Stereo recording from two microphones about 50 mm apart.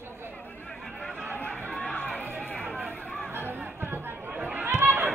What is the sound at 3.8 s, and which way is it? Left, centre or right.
Chatter, right.